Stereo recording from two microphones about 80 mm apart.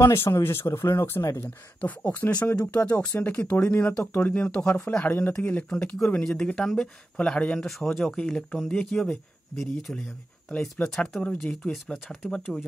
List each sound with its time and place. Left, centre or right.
0.0 s speech: left
1.8 s speech: left; by 10.0 s centre
10.5 s speech: centre